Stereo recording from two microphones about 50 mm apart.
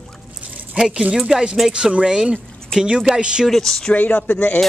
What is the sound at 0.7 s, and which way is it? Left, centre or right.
Speech, centre.